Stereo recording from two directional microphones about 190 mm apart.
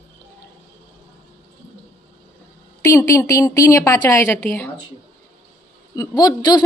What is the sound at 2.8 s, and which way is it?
A woman's voice, 15° left (ahead or behind).